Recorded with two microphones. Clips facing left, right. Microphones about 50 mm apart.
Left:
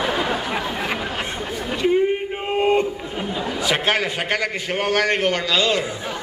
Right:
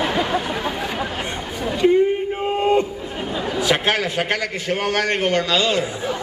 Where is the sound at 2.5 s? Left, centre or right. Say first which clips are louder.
Even; left.